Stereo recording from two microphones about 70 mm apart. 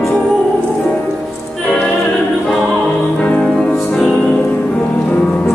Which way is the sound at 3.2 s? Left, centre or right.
Centre.